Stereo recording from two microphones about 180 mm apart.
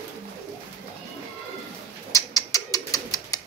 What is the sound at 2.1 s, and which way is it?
Bird, 20° left (ahead or behind).